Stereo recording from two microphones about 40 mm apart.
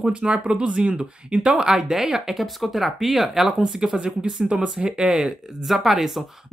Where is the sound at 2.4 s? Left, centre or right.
Centre; by 5.3 s right.